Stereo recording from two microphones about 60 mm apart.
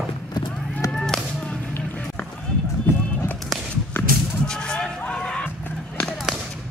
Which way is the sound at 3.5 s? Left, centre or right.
Centre.